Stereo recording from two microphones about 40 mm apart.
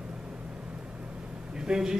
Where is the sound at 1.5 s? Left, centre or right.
Centre.